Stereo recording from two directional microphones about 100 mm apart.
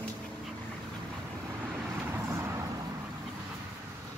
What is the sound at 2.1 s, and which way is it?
Vehicle, 25° right (ahead or behind).